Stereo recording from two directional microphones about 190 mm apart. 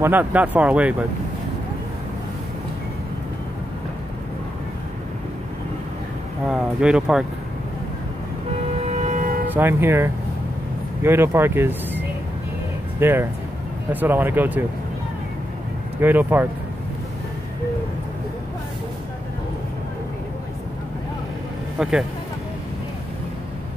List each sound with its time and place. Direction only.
0.0 s speech: 10° right (ahead or behind)
6.5 s speech: 5° right (ahead or behind)
8.9 s vehicle: 40° right (ahead or behind)
9.5 s speech: 10° right (ahead or behind)
13.0 s speech: 10° right (ahead or behind)
16.0 s speech: 10° right (ahead or behind)